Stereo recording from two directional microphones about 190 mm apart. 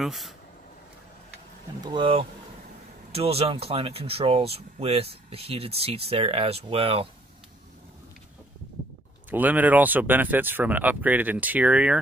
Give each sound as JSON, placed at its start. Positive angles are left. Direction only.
{"t": 0.0, "sound": "speech", "side_deg": 0}
{"t": 1.8, "sound": "speech", "side_deg": -25}
{"t": 9.3, "sound": "speech", "side_deg": -10}